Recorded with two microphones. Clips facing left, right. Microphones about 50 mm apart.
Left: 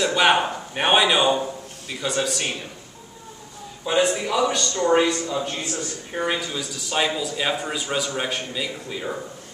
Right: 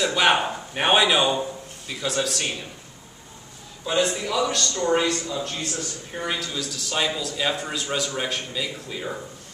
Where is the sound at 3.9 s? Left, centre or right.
Centre.